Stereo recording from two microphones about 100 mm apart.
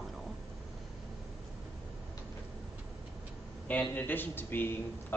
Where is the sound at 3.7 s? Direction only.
15° left (ahead or behind).